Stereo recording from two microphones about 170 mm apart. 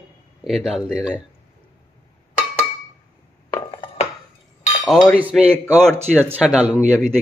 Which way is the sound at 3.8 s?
35° left (ahead or behind).